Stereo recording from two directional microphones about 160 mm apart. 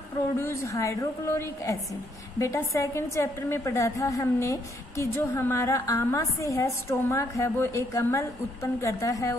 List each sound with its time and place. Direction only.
0.4 s a woman's voice: 15° left (ahead or behind)